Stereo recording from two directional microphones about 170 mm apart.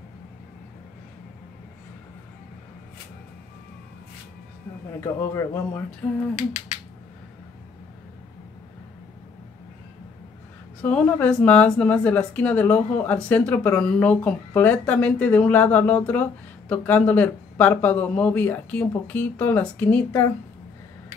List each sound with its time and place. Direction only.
5.0 s a woman's voice: 15° left (ahead or behind)
10.8 s a woman's voice: 5° left (ahead or behind)